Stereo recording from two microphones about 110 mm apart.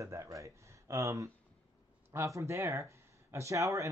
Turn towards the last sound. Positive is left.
turn(degrees=-30)  # may be behind; listen again after turning